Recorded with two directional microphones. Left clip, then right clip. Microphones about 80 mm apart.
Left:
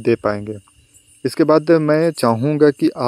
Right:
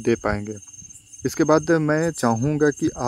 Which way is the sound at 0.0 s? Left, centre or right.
Centre.